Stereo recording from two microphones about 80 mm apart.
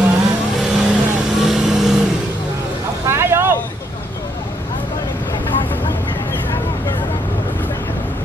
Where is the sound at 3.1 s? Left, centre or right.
Right.